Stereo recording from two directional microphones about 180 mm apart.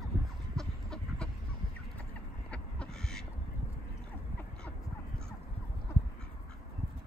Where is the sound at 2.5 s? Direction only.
5° left (ahead or behind).